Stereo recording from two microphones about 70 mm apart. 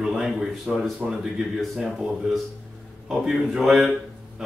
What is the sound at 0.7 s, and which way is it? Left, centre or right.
Speech, centre.